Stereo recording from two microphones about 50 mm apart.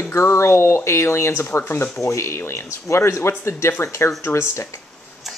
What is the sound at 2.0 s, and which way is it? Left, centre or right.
Speech, left.